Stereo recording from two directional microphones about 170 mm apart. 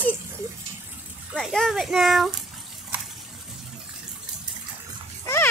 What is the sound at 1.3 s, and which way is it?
A child's voice, centre (ahead or behind).